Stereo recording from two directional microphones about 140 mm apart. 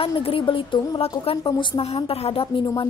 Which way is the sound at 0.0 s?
40° left (ahead or behind).